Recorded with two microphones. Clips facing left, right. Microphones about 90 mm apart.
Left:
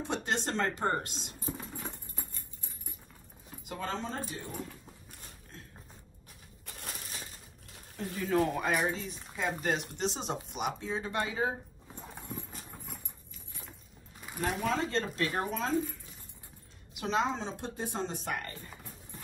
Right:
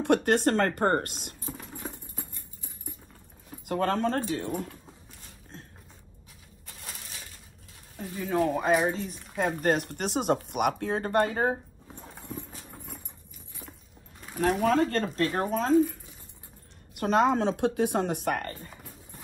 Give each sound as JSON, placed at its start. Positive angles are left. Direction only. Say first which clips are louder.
{"t": 0.0, "sound": "speech", "louder": "right 10 dB", "side_deg": -60}
{"t": 1.5, "sound": "patter", "louder": "even", "side_deg": 0}
{"t": 3.6, "sound": "speech", "louder": "right 10 dB", "side_deg": -60}
{"t": 4.5, "sound": "speech", "louder": "right 8 dB", "side_deg": 0}
{"t": 6.6, "sound": "crushing", "louder": "left 1 dB", "side_deg": 55}
{"t": 8.2, "sound": "speech", "louder": "right 3 dB", "side_deg": -20}
{"t": 8.6, "sound": "speech", "louder": "right 6 dB", "side_deg": -45}
{"t": 12.0, "sound": "horse", "louder": "right 2 dB", "side_deg": 5}
{"t": 12.4, "sound": "clip-clop", "louder": "right 2 dB", "side_deg": -5}
{"t": 14.6, "sound": "speech", "louder": "right 6 dB", "side_deg": -50}
{"t": 16.9, "sound": "speech", "louder": "right 8 dB", "side_deg": -50}
{"t": 18.7, "sound": "horse", "louder": "right 1 dB", "side_deg": -5}